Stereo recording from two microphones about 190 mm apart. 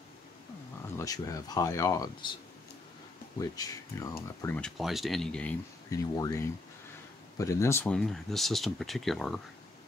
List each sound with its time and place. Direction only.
0.8 s speech: 15° left (ahead or behind)
3.3 s speech: 20° left (ahead or behind)
5.9 s speech: 20° left (ahead or behind); by 9.4 s centre (ahead or behind)